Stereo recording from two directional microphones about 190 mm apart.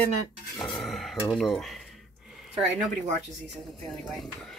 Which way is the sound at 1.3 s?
Centre (ahead or behind).